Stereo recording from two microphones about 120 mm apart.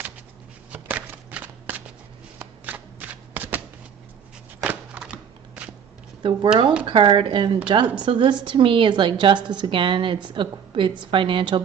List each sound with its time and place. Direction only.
0.7 s shuffling cards: 15° right (ahead or behind)
4.6 s a sound: 10° right (ahead or behind)
6.2 s a woman's voice: 45° right (ahead or behind)